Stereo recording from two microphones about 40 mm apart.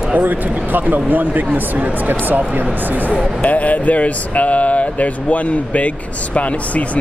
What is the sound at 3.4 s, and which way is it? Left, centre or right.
Speech, left.